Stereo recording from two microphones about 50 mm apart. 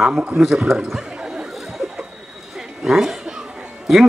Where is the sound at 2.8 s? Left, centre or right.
Centre.